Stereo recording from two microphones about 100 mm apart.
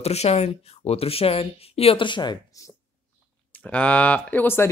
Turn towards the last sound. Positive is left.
turn(degrees=20)  # may be behind; listen again after turning